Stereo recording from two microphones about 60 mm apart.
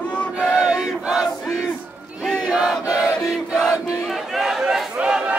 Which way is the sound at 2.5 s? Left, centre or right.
Centre.